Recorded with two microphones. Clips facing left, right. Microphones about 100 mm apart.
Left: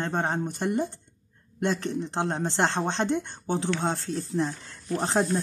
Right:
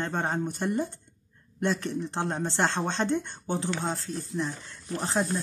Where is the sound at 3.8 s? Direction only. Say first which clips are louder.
Left 3 dB; 25° left (ahead or behind).